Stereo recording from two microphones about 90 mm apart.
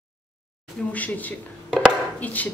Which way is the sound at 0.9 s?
20° left (ahead or behind).